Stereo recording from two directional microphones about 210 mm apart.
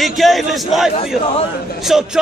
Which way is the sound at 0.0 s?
Centre (ahead or behind).